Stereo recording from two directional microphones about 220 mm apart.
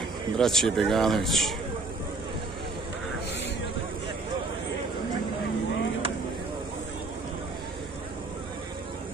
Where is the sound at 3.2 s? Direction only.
50° left (ahead or behind).